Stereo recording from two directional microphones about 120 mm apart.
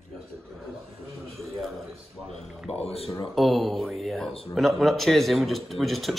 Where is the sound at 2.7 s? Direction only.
60° left (ahead or behind).